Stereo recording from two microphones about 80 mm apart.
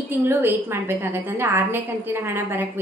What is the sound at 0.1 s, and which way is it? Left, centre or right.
A woman's voice, right.